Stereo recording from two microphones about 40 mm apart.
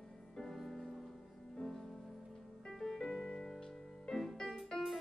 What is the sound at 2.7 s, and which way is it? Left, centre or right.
Music, centre.